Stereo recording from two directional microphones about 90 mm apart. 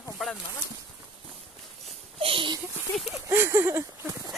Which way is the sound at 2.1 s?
85° right.